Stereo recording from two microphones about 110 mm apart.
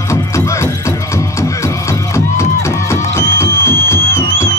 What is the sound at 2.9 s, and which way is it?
Music, 25° left (ahead or behind).